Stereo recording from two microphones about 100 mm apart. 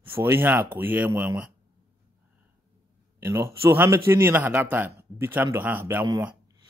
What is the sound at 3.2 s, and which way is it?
Speech, 25° right (ahead or behind).